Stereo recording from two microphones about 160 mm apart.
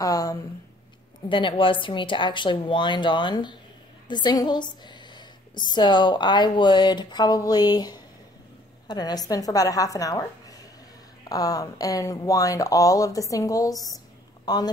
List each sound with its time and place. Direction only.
0.0 s a woman's voice: 20° left (ahead or behind)
1.3 s a woman's voice: 30° left (ahead or behind)